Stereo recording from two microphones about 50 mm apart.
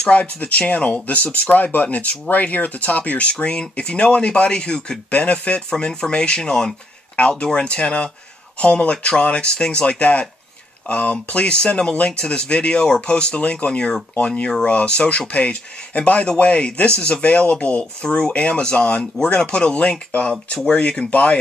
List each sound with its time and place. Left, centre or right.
0.0 s speech: left
5.1 s speech: left
5.7 s speech: centre
21.1 s speech: left